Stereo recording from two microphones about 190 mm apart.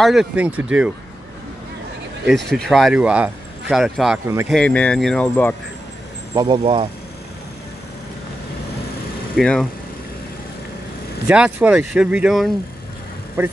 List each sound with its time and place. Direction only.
0.0 s speech: centre (ahead or behind)
2.2 s speech: centre (ahead or behind)
6.3 s speech: 25° right (ahead or behind)
9.4 s speech: 5° left (ahead or behind)
11.2 s speech: 5° right (ahead or behind)